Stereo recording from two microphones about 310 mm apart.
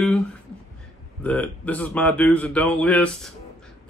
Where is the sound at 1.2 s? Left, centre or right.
Centre.